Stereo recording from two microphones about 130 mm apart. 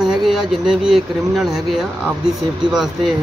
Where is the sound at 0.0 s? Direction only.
5° right (ahead or behind).